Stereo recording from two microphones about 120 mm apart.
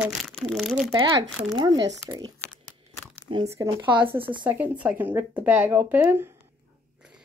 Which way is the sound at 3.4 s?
25° right (ahead or behind).